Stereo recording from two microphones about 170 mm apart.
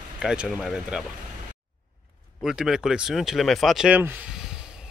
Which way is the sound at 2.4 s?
Centre (ahead or behind).